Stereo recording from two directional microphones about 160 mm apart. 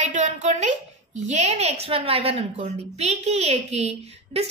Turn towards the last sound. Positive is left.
turn(degrees=-40)  # may be behind; listen again after turning